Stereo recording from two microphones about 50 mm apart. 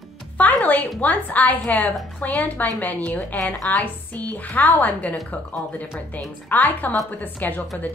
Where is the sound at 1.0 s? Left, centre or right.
Left.